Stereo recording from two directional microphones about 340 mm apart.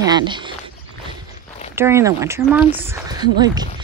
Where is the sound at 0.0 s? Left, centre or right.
Centre.